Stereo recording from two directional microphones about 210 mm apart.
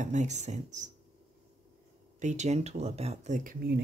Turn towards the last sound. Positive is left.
turn(degrees=-45)  # may be behind; listen again after turning